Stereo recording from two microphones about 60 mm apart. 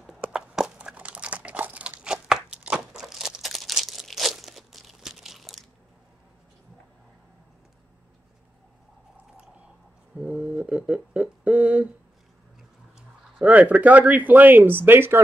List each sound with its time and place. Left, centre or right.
0.2 s crumpling: centre
2.5 s tearing: centre
10.1 s a sound: right
13.4 s speech: right